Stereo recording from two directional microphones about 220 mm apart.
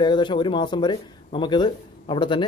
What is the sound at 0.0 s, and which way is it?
Speech, 20° left (ahead or behind).